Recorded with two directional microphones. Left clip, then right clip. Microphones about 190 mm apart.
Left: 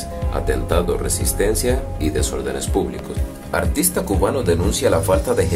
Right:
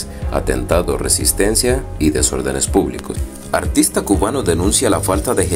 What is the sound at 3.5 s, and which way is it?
Speech, 15° right (ahead or behind).